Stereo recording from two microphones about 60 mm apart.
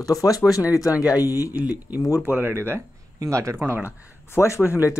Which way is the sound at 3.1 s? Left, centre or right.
Right.